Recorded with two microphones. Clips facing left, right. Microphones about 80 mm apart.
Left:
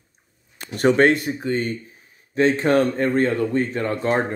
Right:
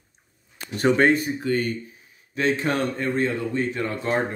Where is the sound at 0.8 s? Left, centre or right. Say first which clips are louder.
Left 3 dB; left.